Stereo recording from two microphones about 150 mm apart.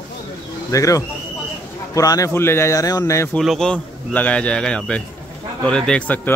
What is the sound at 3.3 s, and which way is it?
Speech, 5° left (ahead or behind).